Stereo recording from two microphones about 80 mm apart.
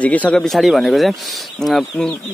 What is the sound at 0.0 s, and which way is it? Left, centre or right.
Speech, centre.